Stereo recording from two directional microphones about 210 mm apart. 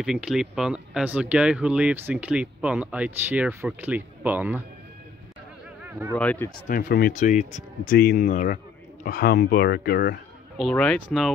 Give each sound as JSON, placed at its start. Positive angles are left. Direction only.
{"t": 0.0, "sound": "speech", "side_deg": 0}
{"t": 6.1, "sound": "speech", "side_deg": 10}
{"t": 6.7, "sound": "speech", "side_deg": 45}
{"t": 10.6, "sound": "speech", "side_deg": 5}